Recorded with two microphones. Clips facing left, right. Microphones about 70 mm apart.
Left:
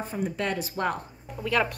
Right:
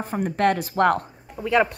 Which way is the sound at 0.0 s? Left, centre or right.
Right.